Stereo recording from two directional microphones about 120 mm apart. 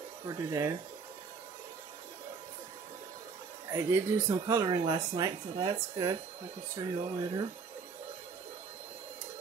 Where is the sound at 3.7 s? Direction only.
20° right (ahead or behind).